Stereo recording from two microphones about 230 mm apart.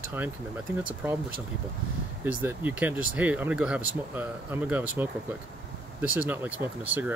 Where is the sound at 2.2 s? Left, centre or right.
Centre.